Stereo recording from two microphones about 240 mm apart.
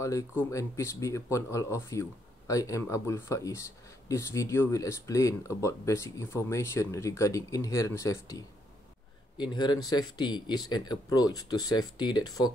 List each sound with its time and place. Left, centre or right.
0.0 s speech: centre